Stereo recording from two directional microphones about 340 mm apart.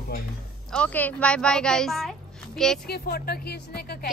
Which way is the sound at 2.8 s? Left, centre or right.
Left.